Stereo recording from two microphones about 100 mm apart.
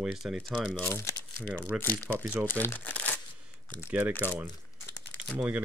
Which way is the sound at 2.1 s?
25° right (ahead or behind).